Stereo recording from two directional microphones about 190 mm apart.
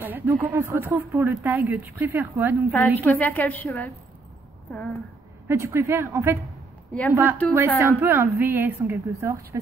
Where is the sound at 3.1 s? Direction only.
10° left (ahead or behind).